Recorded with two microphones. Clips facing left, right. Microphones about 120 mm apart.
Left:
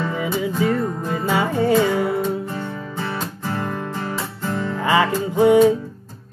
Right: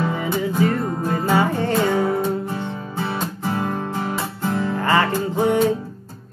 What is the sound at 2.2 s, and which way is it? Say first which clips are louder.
Music: right 1 dB; 10° right (ahead or behind).